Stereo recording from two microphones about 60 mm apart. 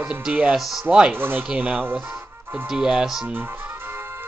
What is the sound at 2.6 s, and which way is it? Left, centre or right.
Speech, centre.